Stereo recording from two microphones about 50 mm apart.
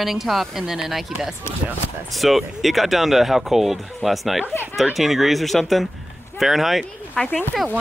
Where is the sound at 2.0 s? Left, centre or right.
Centre.